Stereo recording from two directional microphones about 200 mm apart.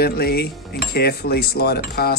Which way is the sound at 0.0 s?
50° left (ahead or behind).